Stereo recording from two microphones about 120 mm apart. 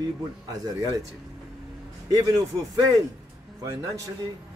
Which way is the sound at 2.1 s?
30° right (ahead or behind).